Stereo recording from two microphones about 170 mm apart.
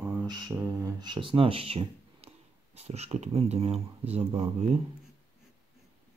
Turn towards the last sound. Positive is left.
turn(degrees=-35)  # may be behind; listen again after turning